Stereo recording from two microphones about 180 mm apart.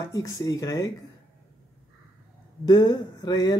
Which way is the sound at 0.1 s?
20° left (ahead or behind).